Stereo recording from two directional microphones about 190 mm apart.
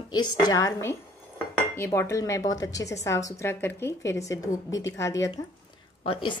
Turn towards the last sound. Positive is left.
turn(degrees=25)  # may be behind; listen again after turning